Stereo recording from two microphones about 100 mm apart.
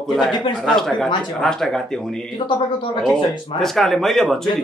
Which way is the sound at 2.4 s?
50° left (ahead or behind).